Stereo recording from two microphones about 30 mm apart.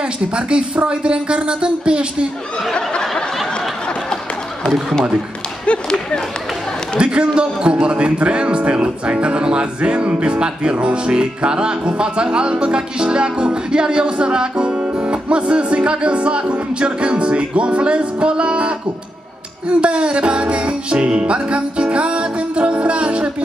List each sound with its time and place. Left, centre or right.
0.0 s speech: right
5.7 s a sound: left
7.0 s speech: right
9.8 s music: right
10.4 s speech: right
19.7 s music: right